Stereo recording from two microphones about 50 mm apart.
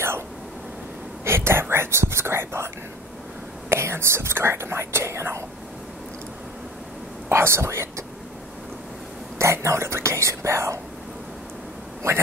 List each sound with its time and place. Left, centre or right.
1.2 s speech: right
7.2 s speech: right
9.4 s speech: right
12.0 s speech: right